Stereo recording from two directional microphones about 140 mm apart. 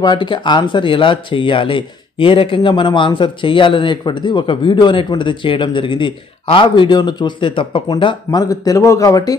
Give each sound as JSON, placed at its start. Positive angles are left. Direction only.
{"t": 0.0, "sound": "speech", "side_deg": 30}